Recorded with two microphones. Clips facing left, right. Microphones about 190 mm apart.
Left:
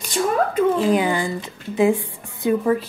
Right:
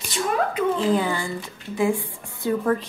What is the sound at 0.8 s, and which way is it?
A woman's voice, 15° left (ahead or behind).